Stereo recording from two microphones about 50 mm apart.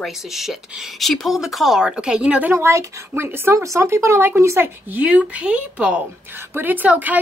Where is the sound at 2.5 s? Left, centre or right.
Right.